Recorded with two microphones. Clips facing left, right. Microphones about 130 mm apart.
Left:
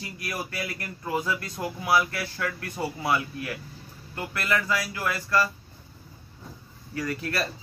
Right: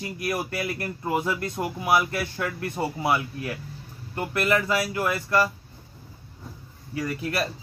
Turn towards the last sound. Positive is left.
turn(degrees=-20)  # may be behind; listen again after turning